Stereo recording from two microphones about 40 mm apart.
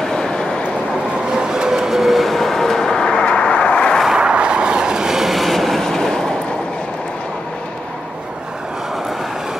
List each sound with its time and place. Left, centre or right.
0.0 s a sound: centre
1.3 s train: centre; by 4.0 s left
4.1 s vehicle: right; by 6.3 s centre